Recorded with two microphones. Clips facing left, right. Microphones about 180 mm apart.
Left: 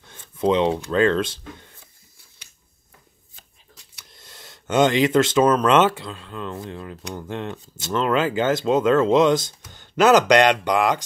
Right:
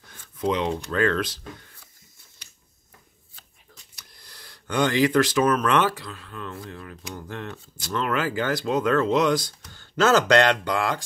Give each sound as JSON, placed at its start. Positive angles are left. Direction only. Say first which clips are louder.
{"t": 0.0, "sound": "a sound", "louder": "left 5 dB", "side_deg": 25}
{"t": 0.9, "sound": "speech", "louder": "left 3 dB", "side_deg": 25}
{"t": 4.1, "sound": "speech", "louder": "left 5 dB", "side_deg": 25}